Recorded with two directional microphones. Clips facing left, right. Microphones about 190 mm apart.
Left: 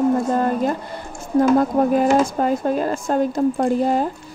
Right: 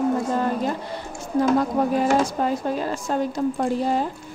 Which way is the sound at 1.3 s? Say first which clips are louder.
Left 4 dB; 50° left (ahead or behind).